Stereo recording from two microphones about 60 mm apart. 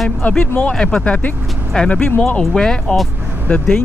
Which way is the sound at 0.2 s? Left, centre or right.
Left.